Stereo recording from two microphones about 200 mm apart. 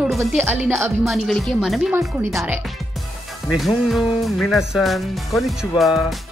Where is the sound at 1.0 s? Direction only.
Centre (ahead or behind).